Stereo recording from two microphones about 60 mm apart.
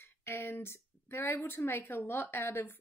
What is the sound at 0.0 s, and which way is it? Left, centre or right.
A woman's voice, left.